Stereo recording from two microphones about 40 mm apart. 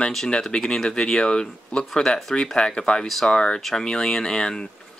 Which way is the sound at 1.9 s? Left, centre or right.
Centre.